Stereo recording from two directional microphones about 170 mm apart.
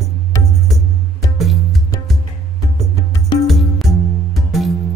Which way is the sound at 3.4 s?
Centre (ahead or behind).